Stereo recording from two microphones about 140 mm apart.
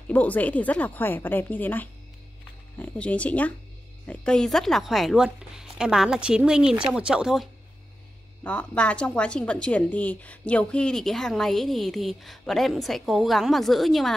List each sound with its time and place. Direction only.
0.1 s a woman's voice: 10° left (ahead or behind); by 7.4 s 5° right (ahead or behind)
8.5 s a woman's voice: 10° left (ahead or behind)